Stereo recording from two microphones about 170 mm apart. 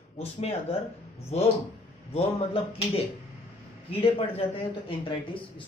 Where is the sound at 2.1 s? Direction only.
35° left (ahead or behind).